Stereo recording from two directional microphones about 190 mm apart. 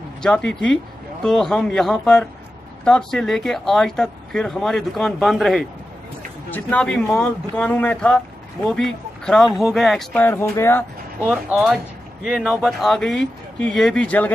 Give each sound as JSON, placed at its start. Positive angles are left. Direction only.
{"t": 0.2, "sound": "speech", "side_deg": 5}
{"t": 11.2, "sound": "speech", "side_deg": -5}